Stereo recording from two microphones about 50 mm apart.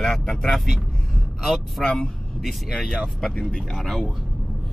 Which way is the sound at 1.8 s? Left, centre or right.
Centre.